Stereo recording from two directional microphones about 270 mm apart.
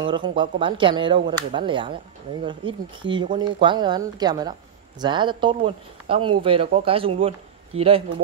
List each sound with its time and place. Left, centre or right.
0.0 s speech: centre